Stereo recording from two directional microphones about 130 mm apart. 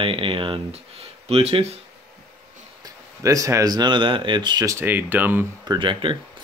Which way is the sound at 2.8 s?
25° right (ahead or behind).